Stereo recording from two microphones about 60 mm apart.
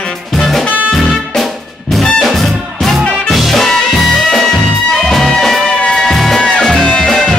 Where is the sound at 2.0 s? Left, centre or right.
Centre.